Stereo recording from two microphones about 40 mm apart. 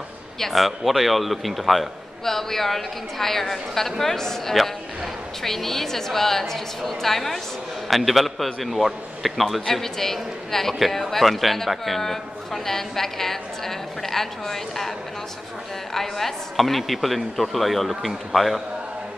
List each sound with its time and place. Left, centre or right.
0.4 s a man's voice: centre
15.9 s a man's voice: centre